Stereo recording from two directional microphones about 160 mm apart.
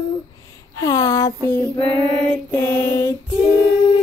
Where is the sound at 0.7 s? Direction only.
20° left (ahead or behind).